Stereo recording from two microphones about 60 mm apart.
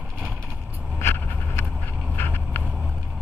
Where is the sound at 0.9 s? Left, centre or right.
Left.